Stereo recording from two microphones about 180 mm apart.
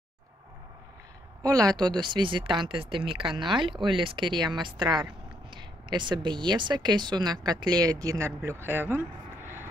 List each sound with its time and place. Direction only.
1.4 s a man's voice: 20° right (ahead or behind)